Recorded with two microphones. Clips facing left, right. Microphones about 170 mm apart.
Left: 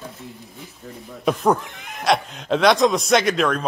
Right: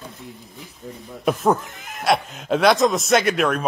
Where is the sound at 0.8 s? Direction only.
5° right (ahead or behind).